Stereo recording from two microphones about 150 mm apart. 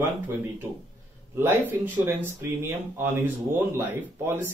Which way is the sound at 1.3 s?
15° right (ahead or behind).